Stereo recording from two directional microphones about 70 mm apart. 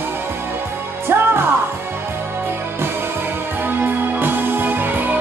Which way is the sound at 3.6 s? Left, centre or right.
Right.